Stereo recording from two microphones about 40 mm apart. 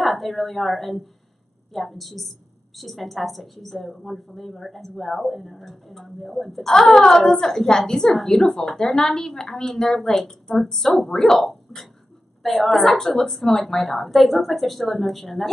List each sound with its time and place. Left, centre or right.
0.0 s a woman's voice: centre